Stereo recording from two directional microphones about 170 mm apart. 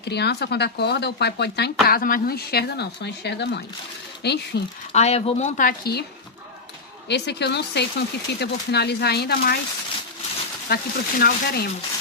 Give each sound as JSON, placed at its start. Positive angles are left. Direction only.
{"t": 0.0, "sound": "speech", "side_deg": 75}
{"t": 4.9, "sound": "speech", "side_deg": 40}
{"t": 7.1, "sound": "speech", "side_deg": 80}
{"t": 10.7, "sound": "speech", "side_deg": 65}